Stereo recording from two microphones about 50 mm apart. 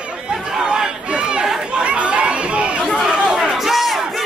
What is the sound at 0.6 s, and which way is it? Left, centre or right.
Chatter, centre.